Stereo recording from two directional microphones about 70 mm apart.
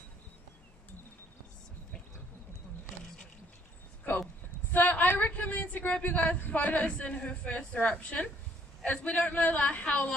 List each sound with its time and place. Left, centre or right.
4.6 s a man's voice: left